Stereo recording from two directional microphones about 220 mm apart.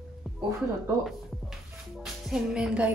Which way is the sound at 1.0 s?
Centre (ahead or behind).